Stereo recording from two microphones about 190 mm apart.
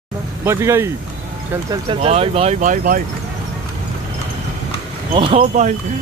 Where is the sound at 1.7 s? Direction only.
30° right (ahead or behind); by 3.0 s 45° right (ahead or behind).